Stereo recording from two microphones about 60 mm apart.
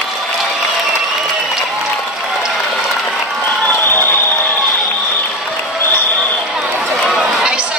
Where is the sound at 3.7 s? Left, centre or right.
Left.